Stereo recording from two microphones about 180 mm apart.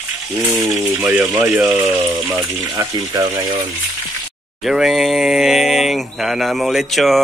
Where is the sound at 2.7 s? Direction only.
25° right (ahead or behind).